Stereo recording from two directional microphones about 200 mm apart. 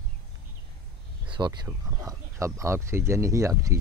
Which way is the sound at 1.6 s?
15° right (ahead or behind).